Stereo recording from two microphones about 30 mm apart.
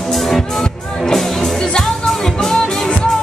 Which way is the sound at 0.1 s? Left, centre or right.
Centre.